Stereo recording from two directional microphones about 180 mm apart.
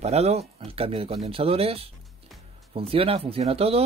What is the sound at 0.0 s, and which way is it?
Speech, 35° right (ahead or behind).